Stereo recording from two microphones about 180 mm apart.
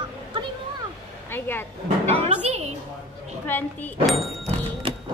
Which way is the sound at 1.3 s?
10° left (ahead or behind).